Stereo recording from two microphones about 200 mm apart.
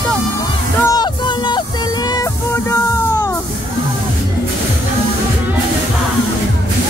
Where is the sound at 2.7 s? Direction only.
10° left (ahead or behind).